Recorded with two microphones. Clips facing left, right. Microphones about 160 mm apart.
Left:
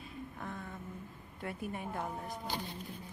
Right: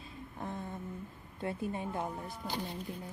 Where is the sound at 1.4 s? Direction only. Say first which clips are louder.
Right 4 dB; 25° right (ahead or behind).